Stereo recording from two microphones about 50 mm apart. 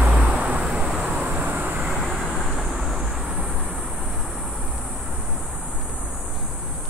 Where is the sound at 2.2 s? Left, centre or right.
Centre.